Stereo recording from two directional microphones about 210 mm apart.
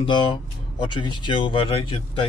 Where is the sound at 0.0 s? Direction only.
25° left (ahead or behind).